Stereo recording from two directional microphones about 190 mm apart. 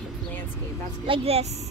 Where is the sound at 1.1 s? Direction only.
30° right (ahead or behind).